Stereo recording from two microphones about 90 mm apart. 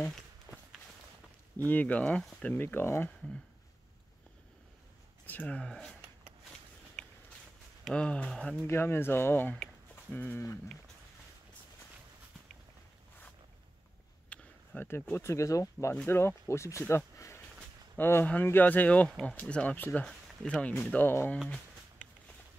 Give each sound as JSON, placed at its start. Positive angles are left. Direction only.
{"t": 0.5, "sound": "run", "side_deg": 40}
{"t": 1.7, "sound": "speech", "side_deg": 15}
{"t": 5.2, "sound": "speech", "side_deg": 20}
{"t": 7.8, "sound": "speech", "side_deg": 10}
{"t": 8.6, "sound": "speech", "side_deg": 25}
{"t": 14.3, "sound": "a sound", "side_deg": 15}
{"t": 14.9, "sound": "speech", "side_deg": 20}
{"t": 15.2, "sound": "speech", "side_deg": 35}